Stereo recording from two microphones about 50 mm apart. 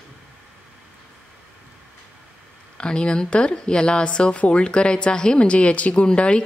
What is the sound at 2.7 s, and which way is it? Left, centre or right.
Speech, centre.